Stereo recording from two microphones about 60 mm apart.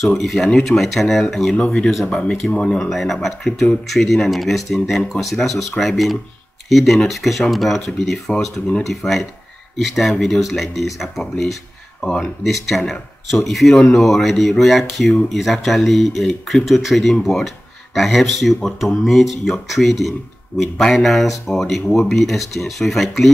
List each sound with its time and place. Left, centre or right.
0.0 s speech: centre
2.9 s speech: centre